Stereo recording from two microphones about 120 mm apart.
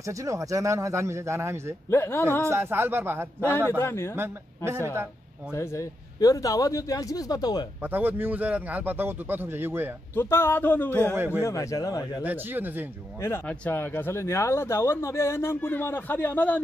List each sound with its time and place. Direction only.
0.0 s speech: 25° right (ahead or behind)
1.9 s speech: 20° left (ahead or behind)
2.4 s speech: 20° right (ahead or behind)
3.7 s speech: 20° left (ahead or behind)
4.1 s speech: 20° right (ahead or behind)
5.5 s speech: 25° left (ahead or behind)
7.8 s a man's voice: 15° right (ahead or behind)
10.1 s speech: 20° left (ahead or behind)
11.1 s a man's voice: 15° right (ahead or behind)
11.4 s speech: 25° left (ahead or behind)
12.2 s a man's voice: 15° right (ahead or behind)
13.5 s speech: 15° left (ahead or behind)